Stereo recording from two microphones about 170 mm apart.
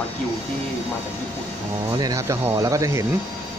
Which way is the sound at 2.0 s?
20° right (ahead or behind).